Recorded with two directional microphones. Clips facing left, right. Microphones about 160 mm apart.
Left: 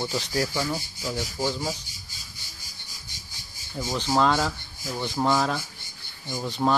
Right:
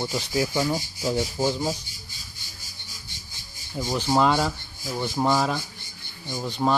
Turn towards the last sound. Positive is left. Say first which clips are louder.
# even
turn(degrees=0)  # may be behind; listen again after turning